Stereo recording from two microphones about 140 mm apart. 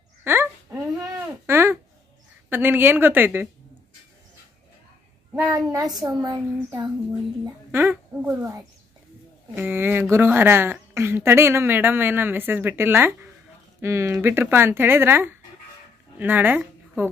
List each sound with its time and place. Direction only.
0.2 s a sound: 15° right (ahead or behind)
1.4 s babbling: 15° right (ahead or behind)
2.5 s a woman's voice: 15° right (ahead or behind)
5.5 s a woman's voice: 25° right (ahead or behind)
7.7 s a woman's voice: 15° right (ahead or behind)
9.6 s a woman's voice: 15° right (ahead or behind)